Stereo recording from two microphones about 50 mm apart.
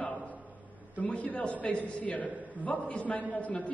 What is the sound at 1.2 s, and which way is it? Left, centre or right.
A man's voice, left.